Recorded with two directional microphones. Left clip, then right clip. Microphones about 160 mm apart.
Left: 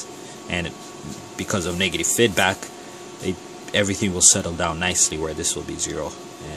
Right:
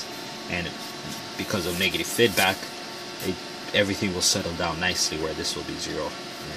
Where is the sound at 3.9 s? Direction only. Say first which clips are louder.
Left 5 dB; 40° left (ahead or behind).